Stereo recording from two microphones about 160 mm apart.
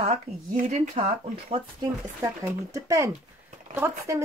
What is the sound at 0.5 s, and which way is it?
Speech, 55° right (ahead or behind).